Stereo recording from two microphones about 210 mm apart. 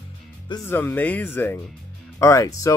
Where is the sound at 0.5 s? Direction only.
10° left (ahead or behind).